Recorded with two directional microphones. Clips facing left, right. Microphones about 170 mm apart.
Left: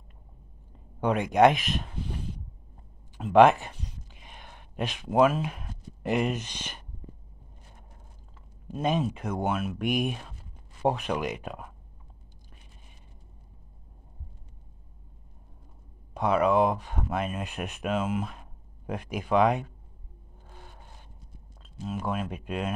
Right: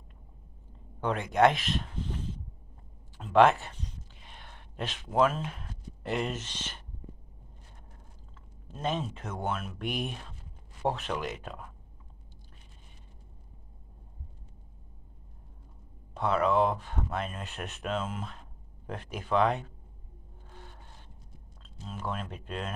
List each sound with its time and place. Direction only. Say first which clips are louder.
1.0 s speech: left 4 dB; 15° left (ahead or behind)
3.2 s a sound: left 4 dB; 15° left (ahead or behind)
8.6 s speech: left 5 dB; 15° left (ahead or behind)
16.1 s speech: left 3 dB; 15° left (ahead or behind)
21.7 s speech: left 5 dB; 15° left (ahead or behind)